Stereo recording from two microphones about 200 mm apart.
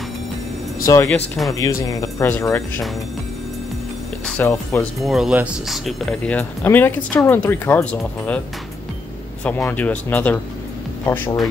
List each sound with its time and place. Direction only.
0.8 s speech: 15° left (ahead or behind)
4.3 s speech: 10° left (ahead or behind)
5.0 s speech: centre (ahead or behind)
9.4 s speech: 10° left (ahead or behind)